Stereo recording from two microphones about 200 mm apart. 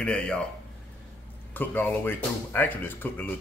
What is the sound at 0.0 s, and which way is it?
Speech, 5° left (ahead or behind).